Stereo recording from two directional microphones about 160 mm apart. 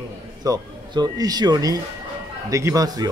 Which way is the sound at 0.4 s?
25° right (ahead or behind).